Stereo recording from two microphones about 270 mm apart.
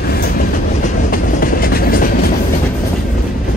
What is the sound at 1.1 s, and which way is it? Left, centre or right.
Train, left.